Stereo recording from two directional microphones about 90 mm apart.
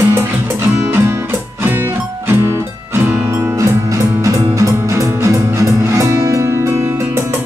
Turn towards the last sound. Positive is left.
turn(degrees=-30)  # may be behind; listen again after turning